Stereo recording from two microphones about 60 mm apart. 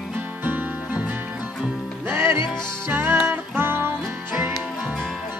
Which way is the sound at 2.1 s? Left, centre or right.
Right.